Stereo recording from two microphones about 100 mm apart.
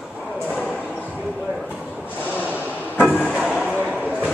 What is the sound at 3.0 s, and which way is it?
Music, 5° right (ahead or behind).